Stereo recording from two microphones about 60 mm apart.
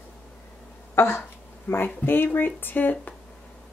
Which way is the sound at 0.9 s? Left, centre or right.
Left.